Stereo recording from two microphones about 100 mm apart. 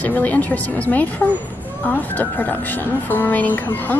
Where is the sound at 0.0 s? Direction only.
15° left (ahead or behind).